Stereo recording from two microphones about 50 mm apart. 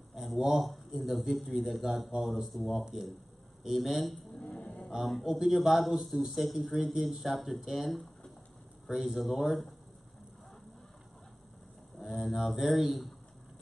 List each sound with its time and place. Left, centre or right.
0.1 s a man's voice: centre
4.5 s cattle: centre
4.8 s a sound: centre
5.2 s a man's voice: centre
12.0 s a man's voice: centre